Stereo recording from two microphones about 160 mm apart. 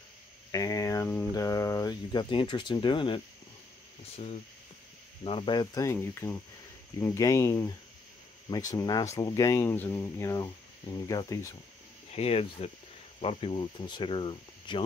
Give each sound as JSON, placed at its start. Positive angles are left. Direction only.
{"t": 0.5, "sound": "speech", "side_deg": 20}
{"t": 12.1, "sound": "speech", "side_deg": 40}